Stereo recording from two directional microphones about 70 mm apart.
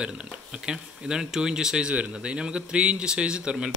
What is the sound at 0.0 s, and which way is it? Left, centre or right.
Speech, centre.